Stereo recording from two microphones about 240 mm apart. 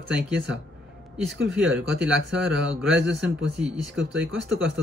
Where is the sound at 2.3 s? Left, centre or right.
Centre.